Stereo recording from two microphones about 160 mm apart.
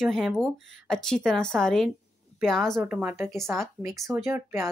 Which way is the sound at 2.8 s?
10° right (ahead or behind).